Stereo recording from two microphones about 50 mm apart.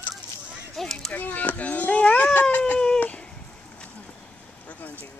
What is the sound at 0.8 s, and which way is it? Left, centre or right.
Children playing, centre.